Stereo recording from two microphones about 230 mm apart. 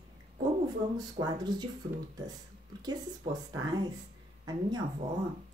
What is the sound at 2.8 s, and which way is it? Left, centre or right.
Speech, centre.